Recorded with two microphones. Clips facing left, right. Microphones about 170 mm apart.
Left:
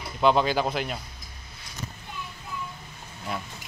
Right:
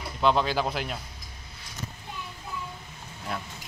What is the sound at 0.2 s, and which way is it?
Speech, 5° left (ahead or behind).